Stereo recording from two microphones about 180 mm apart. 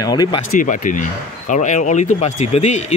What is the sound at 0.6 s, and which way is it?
Speech, 45° left (ahead or behind).